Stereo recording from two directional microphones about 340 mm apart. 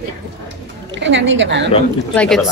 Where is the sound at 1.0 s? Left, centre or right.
Right.